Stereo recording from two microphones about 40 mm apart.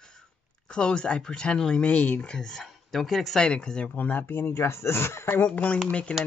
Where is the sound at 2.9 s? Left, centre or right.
Centre.